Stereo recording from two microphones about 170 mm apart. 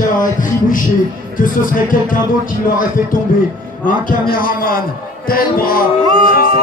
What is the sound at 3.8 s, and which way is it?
Speech, 55° left (ahead or behind).